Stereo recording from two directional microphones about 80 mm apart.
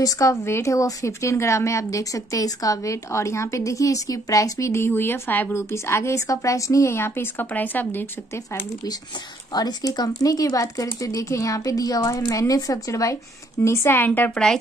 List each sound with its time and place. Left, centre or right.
0.0 s a woman's voice: left
9.5 s speech: left
14.3 s speech: centre